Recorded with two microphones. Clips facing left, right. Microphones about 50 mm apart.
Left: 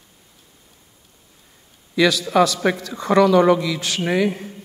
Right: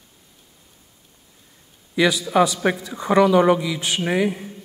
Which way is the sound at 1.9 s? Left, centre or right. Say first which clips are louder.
Left 1 dB; centre.